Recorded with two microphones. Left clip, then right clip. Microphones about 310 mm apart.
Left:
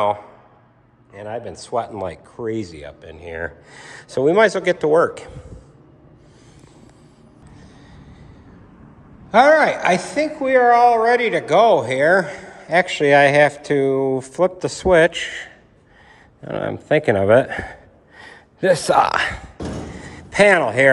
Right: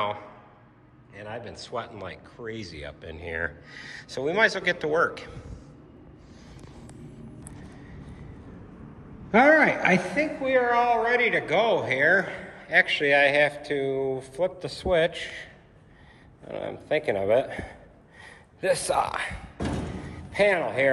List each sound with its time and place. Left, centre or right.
0.0 s speech: centre
4.1 s speech: left
9.3 s a woman's voice: centre; by 15.4 s left
16.4 s speech: left
20.0 s a sound: left